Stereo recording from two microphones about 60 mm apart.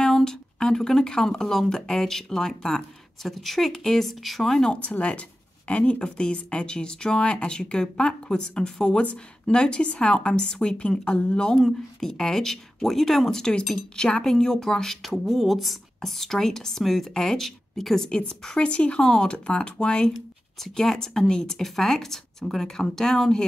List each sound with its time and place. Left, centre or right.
0.0 s a woman's voice: centre
4.7 s a woman's voice: left
11.5 s a woman's voice: centre